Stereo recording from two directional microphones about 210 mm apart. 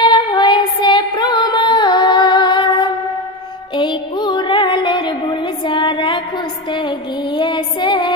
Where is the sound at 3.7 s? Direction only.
20° left (ahead or behind).